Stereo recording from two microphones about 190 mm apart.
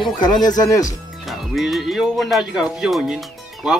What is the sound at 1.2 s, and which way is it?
Speech, centre (ahead or behind).